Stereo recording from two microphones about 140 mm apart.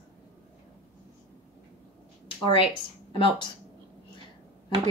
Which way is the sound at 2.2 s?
40° left (ahead or behind).